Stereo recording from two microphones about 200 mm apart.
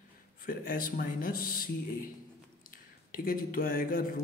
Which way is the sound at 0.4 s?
45° left (ahead or behind).